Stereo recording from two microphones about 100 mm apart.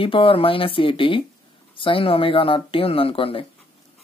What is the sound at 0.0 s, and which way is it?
Speech, 60° left (ahead or behind).